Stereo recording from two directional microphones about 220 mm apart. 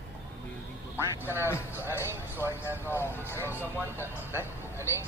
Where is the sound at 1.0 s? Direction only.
10° right (ahead or behind).